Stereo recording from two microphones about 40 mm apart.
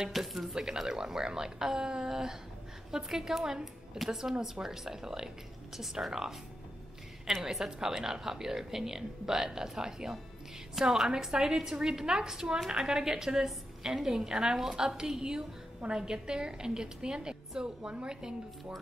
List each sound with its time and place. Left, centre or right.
0.1 s a woman's voice: centre
7.5 s a woman's voice: centre